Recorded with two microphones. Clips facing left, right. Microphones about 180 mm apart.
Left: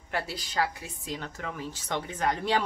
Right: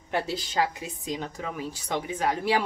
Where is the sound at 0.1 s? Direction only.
20° right (ahead or behind).